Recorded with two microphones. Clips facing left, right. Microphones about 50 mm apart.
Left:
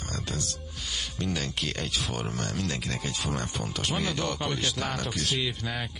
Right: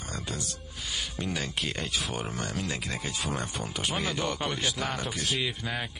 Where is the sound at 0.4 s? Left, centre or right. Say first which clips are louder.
Left 2 dB; centre.